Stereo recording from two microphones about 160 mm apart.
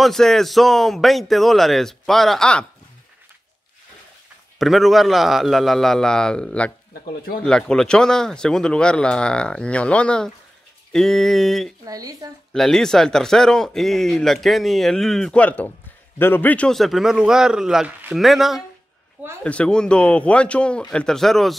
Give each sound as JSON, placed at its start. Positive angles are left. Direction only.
{"t": 0.0, "sound": "speech", "side_deg": 0}
{"t": 4.6, "sound": "speech", "side_deg": 0}
{"t": 11.8, "sound": "speech", "side_deg": -20}
{"t": 12.5, "sound": "speech", "side_deg": 5}